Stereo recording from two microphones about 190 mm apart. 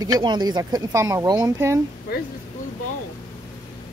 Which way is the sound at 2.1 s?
55° left (ahead or behind).